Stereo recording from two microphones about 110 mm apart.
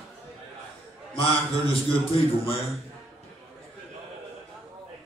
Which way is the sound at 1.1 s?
55° left (ahead or behind).